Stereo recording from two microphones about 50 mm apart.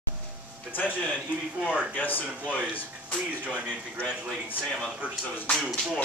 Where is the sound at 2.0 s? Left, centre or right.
Left.